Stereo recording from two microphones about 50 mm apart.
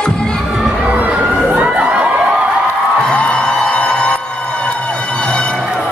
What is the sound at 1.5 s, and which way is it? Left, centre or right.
Crowd, right.